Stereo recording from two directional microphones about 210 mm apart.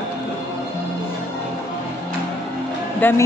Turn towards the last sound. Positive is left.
turn(degrees=10)  # may be behind; listen again after turning